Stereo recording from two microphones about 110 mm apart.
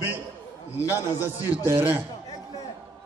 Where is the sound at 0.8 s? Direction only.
30° left (ahead or behind).